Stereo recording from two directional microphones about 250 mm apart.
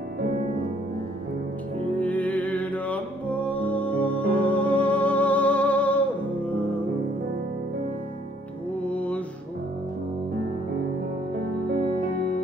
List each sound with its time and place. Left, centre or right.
2.0 s music: centre
8.8 s mantra: centre